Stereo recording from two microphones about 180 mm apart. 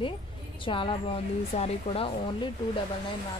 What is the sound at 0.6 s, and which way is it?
A woman's voice, 30° left (ahead or behind).